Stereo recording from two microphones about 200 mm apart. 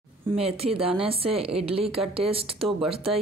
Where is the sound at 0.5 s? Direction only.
30° right (ahead or behind).